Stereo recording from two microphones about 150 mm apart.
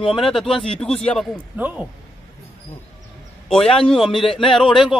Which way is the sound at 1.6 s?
10° right (ahead or behind).